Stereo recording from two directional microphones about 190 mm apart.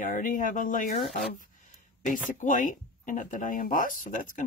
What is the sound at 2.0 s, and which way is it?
Speech, 45° left (ahead or behind).